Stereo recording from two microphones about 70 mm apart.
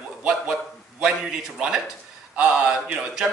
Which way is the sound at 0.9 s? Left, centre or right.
Centre.